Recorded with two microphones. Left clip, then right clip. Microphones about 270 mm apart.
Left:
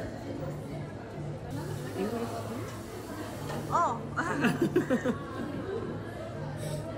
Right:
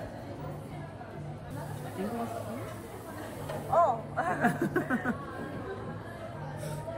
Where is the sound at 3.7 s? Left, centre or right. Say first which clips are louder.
Right 3 dB; centre.